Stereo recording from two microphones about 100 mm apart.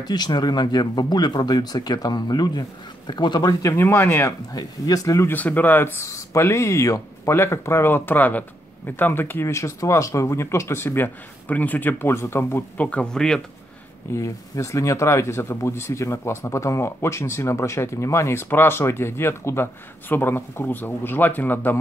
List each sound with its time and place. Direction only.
0.0 s speech: 45° left (ahead or behind)
3.7 s speech: 25° left (ahead or behind)
4.5 s speech: 35° left (ahead or behind)
5.3 s speech: 15° left (ahead or behind)
12.7 s speech: 10° left (ahead or behind)
14.1 s speech: 30° left (ahead or behind)